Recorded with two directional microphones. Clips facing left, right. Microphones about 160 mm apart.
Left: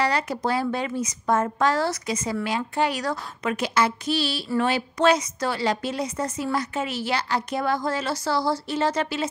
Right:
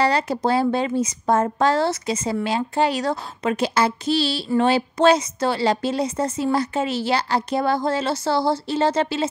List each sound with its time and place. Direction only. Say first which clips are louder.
0.0 s speech: right 4 dB; 30° right (ahead or behind)